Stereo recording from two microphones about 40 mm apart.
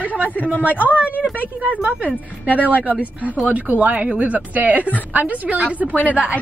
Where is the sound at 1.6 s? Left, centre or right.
Right.